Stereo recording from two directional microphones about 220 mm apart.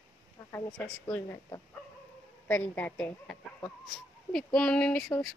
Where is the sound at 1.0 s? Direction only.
15° left (ahead or behind).